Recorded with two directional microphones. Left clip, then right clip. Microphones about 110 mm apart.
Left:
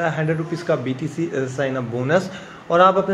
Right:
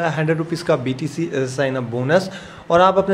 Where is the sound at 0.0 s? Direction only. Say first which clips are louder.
Right 1 dB; 30° right (ahead or behind).